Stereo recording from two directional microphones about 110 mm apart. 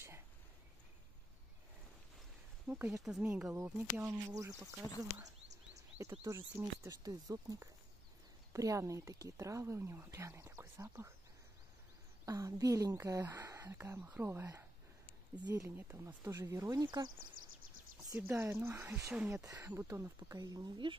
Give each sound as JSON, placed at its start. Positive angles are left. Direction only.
{"t": 2.7, "sound": "speech", "side_deg": -5}
{"t": 3.5, "sound": "speech", "side_deg": -25}
{"t": 6.2, "sound": "speech", "side_deg": -30}
{"t": 12.3, "sound": "speech", "side_deg": -30}
{"t": 18.1, "sound": "speech", "side_deg": -20}